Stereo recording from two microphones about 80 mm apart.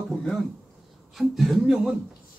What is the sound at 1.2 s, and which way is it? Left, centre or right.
Speech, centre.